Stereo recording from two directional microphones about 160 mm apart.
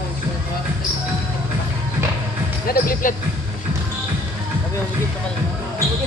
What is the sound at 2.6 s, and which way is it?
Speech, 65° left (ahead or behind).